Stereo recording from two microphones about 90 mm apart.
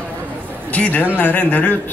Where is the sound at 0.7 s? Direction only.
15° left (ahead or behind).